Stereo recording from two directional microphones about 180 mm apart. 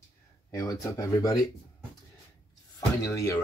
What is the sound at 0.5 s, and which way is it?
Speech, 20° left (ahead or behind).